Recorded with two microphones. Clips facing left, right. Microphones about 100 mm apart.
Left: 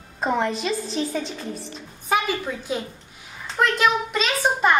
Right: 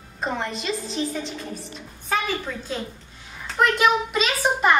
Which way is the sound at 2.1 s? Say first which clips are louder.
Left 3 dB; 15° left (ahead or behind).